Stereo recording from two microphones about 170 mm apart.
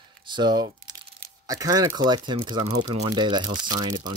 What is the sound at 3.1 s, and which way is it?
Speech, 25° right (ahead or behind).